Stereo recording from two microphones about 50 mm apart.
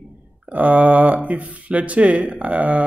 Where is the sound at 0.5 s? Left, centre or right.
Right.